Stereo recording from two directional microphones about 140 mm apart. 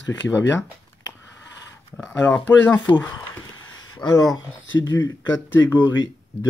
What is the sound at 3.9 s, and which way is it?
Speech, 30° left (ahead or behind).